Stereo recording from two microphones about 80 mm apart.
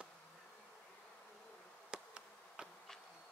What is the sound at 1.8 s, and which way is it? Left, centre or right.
Insect, centre.